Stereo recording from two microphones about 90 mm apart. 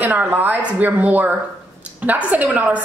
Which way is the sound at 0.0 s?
20° right (ahead or behind).